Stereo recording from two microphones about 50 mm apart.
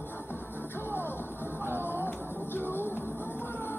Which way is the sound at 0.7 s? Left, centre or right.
Left.